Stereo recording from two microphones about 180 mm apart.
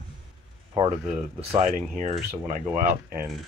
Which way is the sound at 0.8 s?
30° right (ahead or behind).